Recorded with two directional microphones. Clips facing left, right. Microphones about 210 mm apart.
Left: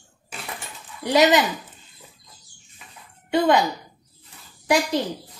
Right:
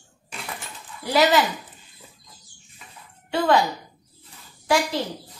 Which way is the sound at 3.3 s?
15° left (ahead or behind).